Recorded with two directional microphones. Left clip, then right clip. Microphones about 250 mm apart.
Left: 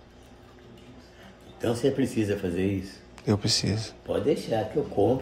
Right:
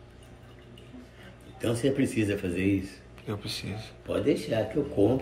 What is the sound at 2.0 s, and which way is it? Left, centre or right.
Speech, left.